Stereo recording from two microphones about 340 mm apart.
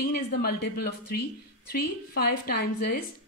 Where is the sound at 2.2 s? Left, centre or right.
Left.